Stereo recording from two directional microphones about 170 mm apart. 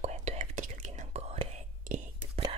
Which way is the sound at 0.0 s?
40° right (ahead or behind).